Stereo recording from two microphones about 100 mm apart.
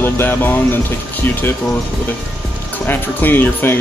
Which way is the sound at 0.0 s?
20° left (ahead or behind).